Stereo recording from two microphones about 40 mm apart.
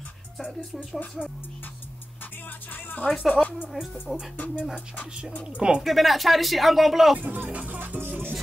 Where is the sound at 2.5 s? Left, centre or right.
Left.